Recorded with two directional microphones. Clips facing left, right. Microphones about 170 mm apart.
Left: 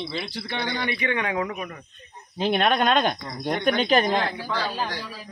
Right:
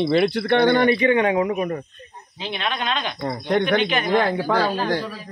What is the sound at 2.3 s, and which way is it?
Speech, 50° left (ahead or behind).